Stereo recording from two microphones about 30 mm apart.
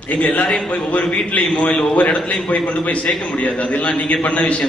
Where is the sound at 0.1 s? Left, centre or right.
Left.